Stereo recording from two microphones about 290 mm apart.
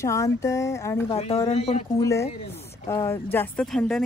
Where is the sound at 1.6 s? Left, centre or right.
Left.